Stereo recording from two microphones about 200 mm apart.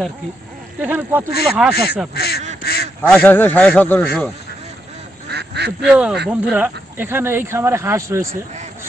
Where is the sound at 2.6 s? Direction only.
50° left (ahead or behind).